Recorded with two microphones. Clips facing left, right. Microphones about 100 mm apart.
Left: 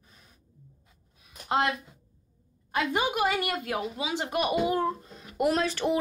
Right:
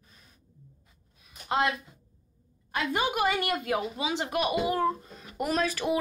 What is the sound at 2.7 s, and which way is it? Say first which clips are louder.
A woman's voice: left 1 dB; 10° left (ahead or behind).